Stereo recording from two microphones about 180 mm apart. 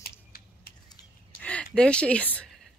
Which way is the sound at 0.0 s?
60° left (ahead or behind).